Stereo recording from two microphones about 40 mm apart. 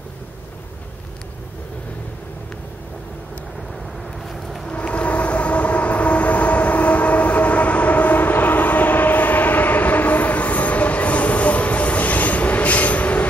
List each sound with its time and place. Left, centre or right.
4.6 s train: left